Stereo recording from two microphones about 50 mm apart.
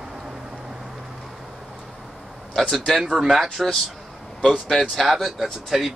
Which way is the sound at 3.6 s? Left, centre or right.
Centre.